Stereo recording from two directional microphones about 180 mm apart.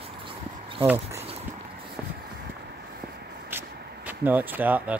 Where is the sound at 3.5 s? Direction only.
10° right (ahead or behind).